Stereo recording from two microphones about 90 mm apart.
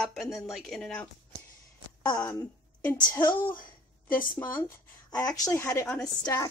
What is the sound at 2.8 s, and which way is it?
Speech, 20° left (ahead or behind).